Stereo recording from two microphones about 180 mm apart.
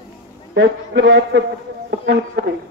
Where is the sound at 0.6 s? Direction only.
70° right (ahead or behind).